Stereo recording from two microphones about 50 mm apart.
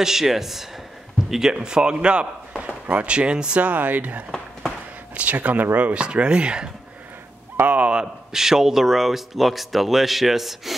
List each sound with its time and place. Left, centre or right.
0.0 s speech: centre
3.6 s speech: right; by 6.7 s centre
7.5 s a sound: right
8.3 s speech: centre